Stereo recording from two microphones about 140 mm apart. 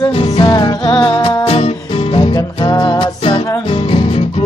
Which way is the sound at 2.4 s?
30° left (ahead or behind).